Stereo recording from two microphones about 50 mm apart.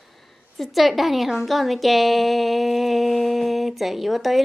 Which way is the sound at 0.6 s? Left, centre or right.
Centre.